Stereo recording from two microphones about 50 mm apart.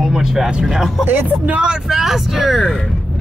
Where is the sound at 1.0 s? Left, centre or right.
Right.